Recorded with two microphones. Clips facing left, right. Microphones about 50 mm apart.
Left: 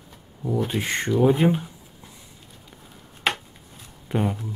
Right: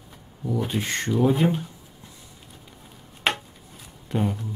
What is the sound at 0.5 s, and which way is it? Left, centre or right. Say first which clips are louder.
Speech: left 2 dB; centre.